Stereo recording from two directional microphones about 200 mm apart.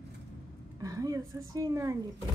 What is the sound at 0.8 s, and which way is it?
A woman's voice, 15° right (ahead or behind).